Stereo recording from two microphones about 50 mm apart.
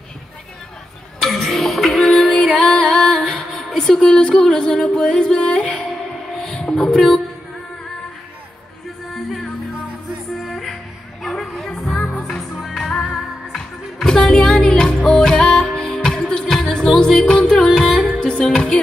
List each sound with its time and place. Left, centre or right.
1.2 s a sound: centre
2.5 s music: left
3.7 s speech: centre
6.3 s music: centre
9.1 s music: centre
11.2 s a sound: centre
12.0 s music: left
12.5 s music: centre
14.0 s music: centre